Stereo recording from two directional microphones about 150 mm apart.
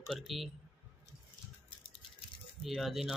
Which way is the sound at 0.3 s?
Centre (ahead or behind).